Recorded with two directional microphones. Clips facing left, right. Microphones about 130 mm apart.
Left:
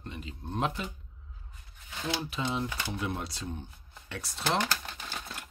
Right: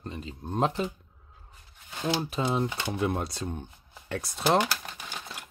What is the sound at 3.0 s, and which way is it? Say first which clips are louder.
Speech: right 9 dB; 50° right (ahead or behind).